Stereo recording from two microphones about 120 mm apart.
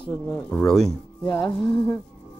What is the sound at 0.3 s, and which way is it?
Speech, 10° left (ahead or behind).